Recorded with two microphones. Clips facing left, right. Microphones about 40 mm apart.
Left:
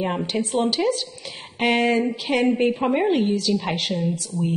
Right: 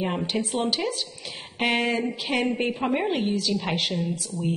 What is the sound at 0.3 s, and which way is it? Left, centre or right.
Speech, centre.